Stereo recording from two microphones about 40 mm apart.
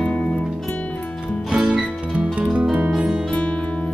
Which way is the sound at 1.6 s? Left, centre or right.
Right.